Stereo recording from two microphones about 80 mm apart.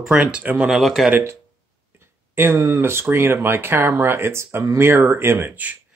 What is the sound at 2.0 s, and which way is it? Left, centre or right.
Speech, right.